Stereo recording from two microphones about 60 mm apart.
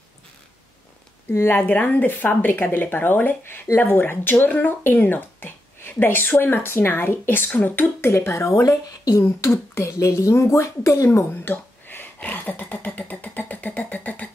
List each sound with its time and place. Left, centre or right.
1.3 s speech: left
11.1 s speech: left